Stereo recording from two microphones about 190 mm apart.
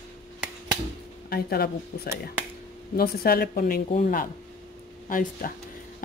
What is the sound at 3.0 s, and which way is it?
Speech, 50° left (ahead or behind).